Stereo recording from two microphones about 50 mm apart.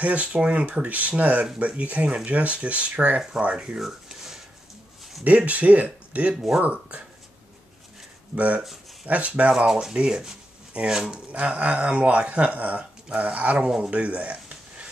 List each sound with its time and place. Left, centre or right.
0.0 s speech: right; by 4.4 s centre
5.2 s speech: right
9.0 s speech: right
9.7 s speech: centre
9.9 s a sound: centre
10.9 s speech: centre
11.3 s speech: right